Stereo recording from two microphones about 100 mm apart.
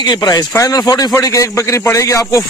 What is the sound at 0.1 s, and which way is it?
Speech, 45° left (ahead or behind).